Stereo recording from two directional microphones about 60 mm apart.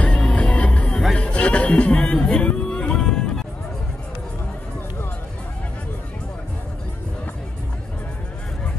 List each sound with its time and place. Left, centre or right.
0.2 s music: centre